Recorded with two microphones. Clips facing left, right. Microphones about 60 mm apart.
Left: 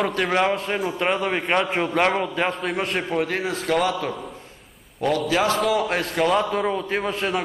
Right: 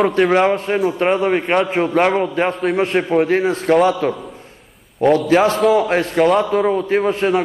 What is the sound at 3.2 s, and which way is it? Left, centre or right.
A man's voice, right.